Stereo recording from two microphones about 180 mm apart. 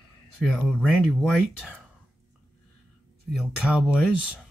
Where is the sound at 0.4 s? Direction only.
Centre (ahead or behind).